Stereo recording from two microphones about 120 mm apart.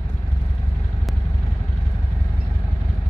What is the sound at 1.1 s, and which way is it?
Vehicle, centre (ahead or behind).